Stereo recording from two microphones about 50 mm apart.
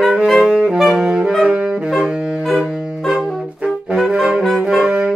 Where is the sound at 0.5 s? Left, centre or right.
Centre.